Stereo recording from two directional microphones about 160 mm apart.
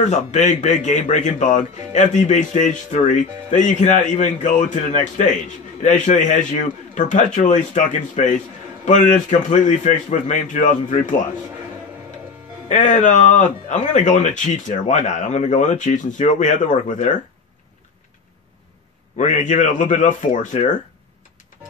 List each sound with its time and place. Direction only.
0.0 s speech: 45° left (ahead or behind)
12.6 s speech: 50° left (ahead or behind)
19.1 s speech: 50° left (ahead or behind)